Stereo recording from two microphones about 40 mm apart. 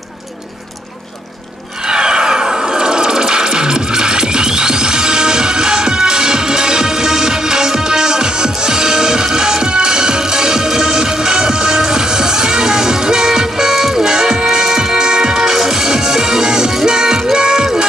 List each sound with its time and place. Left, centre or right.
1.9 s music: right